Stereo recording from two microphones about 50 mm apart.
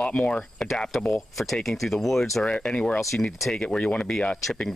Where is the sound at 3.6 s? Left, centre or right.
Left.